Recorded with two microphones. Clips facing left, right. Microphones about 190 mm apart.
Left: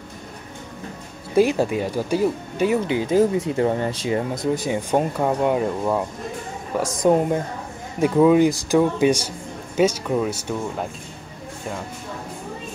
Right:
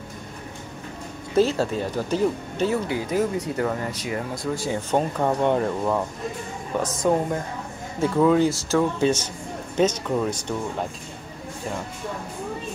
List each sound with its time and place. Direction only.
1.3 s speech: 15° left (ahead or behind)